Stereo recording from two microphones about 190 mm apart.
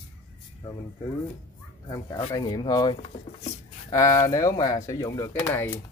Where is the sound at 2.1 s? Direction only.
25° left (ahead or behind).